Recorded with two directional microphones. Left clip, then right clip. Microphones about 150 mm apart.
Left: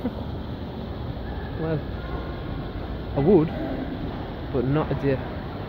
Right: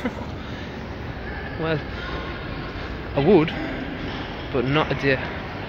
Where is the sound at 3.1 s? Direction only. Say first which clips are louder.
Right 2 dB; 5° right (ahead or behind).